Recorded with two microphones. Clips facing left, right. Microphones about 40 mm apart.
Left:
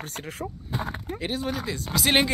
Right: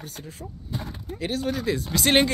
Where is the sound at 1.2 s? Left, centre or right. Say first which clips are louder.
Right 3 dB; centre.